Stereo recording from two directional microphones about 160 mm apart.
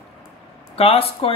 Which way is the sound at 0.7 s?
35° left (ahead or behind).